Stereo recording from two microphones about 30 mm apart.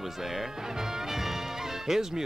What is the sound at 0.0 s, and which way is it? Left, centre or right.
Speech, centre.